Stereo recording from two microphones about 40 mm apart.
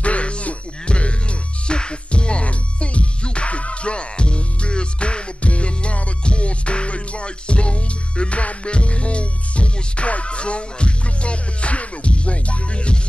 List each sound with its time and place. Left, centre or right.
0.0 s music: left